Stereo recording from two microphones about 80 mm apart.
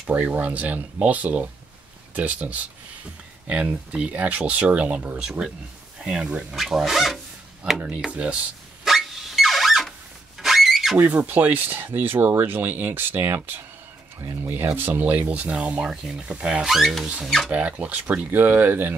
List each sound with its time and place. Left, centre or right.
0.0 s speech: right
8.8 s car alarm: centre
10.4 s a sound: centre
11.0 s speech: right
16.6 s speech: centre
17.0 s speech: centre